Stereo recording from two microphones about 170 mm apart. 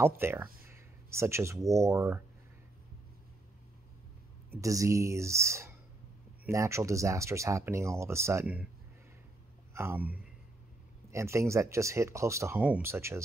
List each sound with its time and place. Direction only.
0.0 s speech: 15° right (ahead or behind)
4.5 s speech: 20° right (ahead or behind)
9.8 s speech: 10° right (ahead or behind)